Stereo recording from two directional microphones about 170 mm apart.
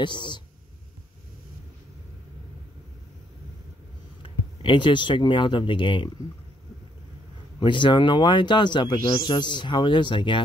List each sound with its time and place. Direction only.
0.0 s speech: 25° left (ahead or behind)
4.2 s speech: 30° left (ahead or behind)
7.6 s speech: 30° left (ahead or behind)